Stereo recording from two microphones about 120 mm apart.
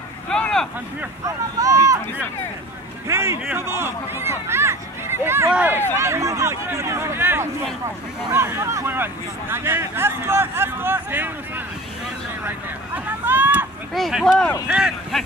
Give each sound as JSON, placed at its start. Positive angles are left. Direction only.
{"t": 0.3, "sound": "vehicle", "side_deg": 5}
{"t": 1.2, "sound": "speech", "side_deg": -30}
{"t": 3.1, "sound": "speech", "side_deg": -20}
{"t": 12.4, "sound": "vehicle", "side_deg": -15}
{"t": 13.9, "sound": "speech", "side_deg": 0}